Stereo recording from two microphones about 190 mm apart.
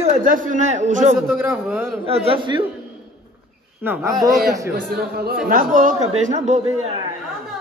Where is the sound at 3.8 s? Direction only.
10° right (ahead or behind).